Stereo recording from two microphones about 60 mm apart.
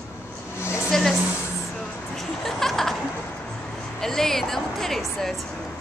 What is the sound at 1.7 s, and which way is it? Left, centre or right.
Speech, centre.